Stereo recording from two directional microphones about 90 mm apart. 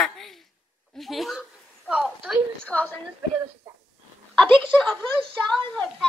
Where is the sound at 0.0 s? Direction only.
5° left (ahead or behind).